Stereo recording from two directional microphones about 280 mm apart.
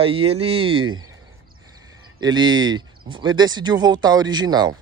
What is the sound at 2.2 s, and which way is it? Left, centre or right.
A man's voice, centre.